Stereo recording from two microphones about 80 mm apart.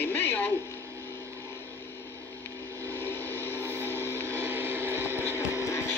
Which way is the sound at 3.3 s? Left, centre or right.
Left.